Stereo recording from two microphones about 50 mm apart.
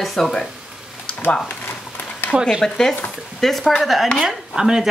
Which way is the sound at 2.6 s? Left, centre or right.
Centre.